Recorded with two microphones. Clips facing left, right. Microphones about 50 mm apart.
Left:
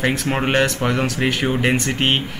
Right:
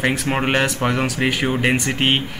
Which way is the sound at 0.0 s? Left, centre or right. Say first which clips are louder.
Even; centre.